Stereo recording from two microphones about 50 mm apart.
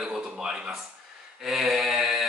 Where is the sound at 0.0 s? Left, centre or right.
Centre.